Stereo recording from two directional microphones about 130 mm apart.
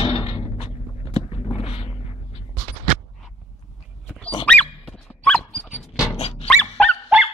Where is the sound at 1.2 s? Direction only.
45° left (ahead or behind).